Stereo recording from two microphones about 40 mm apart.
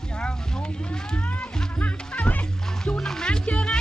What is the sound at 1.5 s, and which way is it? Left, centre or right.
Music, centre.